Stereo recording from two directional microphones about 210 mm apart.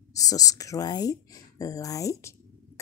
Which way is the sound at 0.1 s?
15° left (ahead or behind).